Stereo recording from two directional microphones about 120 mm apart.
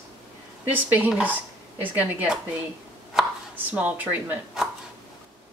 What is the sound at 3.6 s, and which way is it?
Speech, 15° right (ahead or behind).